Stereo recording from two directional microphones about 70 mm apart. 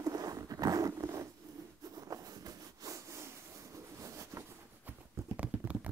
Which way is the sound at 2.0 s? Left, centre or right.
Right.